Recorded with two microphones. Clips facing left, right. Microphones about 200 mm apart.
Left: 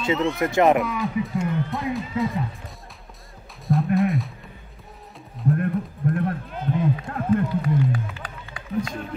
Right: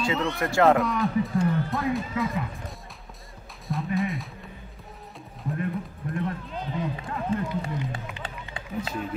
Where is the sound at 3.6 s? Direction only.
Centre (ahead or behind).